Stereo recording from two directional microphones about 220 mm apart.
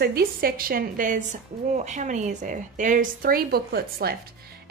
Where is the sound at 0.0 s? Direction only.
45° right (ahead or behind).